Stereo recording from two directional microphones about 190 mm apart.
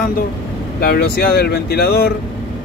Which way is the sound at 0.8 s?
55° left (ahead or behind).